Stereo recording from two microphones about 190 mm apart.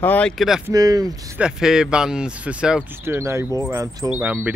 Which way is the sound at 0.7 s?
20° right (ahead or behind).